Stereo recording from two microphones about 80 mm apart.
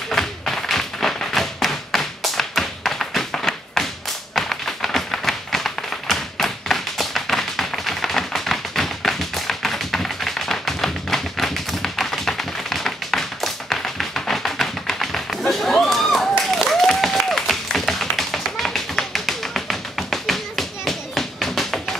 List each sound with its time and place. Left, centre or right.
0.1 s tap: centre